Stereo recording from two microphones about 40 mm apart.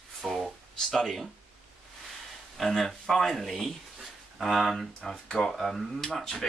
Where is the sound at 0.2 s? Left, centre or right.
Centre.